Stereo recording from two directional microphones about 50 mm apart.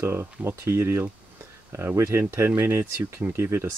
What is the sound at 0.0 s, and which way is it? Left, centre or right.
Speech, right.